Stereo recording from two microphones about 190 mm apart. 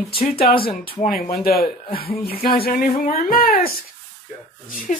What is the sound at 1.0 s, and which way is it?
Speech, 40° left (ahead or behind).